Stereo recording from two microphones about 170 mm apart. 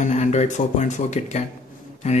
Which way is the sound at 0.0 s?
40° left (ahead or behind).